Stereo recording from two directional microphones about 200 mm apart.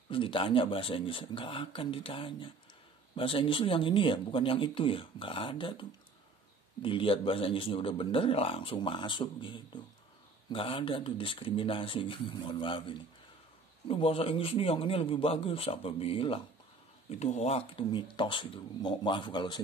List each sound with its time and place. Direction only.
0.1 s a man's voice: 25° left (ahead or behind)